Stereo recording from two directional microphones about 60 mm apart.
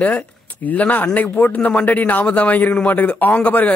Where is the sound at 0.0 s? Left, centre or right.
Left.